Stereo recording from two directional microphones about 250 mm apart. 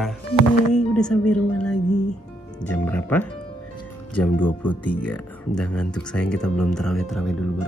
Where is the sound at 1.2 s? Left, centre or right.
Left.